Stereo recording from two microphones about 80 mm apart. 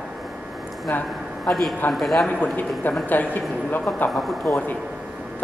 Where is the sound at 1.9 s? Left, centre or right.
Centre.